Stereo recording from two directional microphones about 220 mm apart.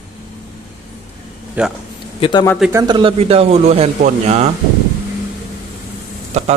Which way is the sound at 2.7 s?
20° right (ahead or behind).